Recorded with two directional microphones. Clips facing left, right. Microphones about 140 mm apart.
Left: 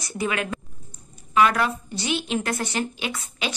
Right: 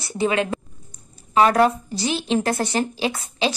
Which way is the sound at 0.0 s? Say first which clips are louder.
Right 5 dB; 30° right (ahead or behind).